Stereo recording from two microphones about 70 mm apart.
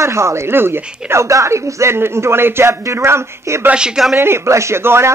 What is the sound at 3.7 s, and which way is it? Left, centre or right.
Speech, centre.